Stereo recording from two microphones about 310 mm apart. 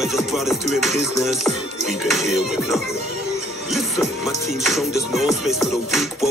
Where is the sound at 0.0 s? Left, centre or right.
Centre.